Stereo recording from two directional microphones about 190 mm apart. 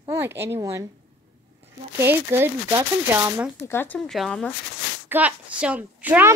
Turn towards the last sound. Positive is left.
turn(degrees=-10)  # may be behind; listen again after turning